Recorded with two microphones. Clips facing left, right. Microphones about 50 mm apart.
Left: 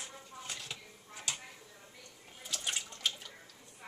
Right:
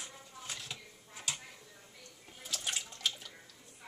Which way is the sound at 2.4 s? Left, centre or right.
Centre.